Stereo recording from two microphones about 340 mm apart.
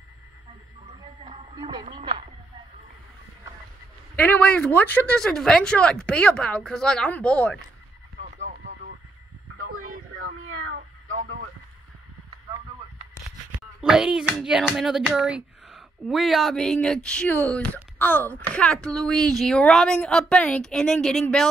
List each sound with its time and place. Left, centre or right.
1.2 s music: centre
4.2 s speech: centre
8.2 s radio: centre
9.6 s a sound: right
10.2 s meow: right
13.7 s speech: centre